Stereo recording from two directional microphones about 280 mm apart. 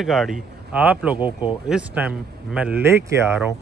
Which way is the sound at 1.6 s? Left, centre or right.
Centre.